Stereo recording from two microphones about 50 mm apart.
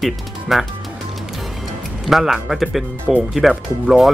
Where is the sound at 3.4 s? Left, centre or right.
Centre.